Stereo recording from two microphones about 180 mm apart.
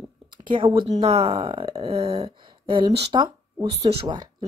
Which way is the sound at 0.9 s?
30° right (ahead or behind).